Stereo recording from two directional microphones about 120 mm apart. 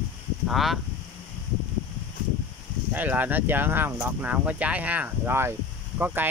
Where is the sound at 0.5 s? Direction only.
Centre (ahead or behind).